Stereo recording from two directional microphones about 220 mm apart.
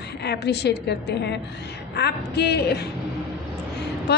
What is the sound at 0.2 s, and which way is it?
A woman's voice, 50° left (ahead or behind).